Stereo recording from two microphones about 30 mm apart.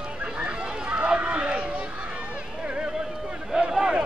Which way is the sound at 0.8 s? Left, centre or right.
Right.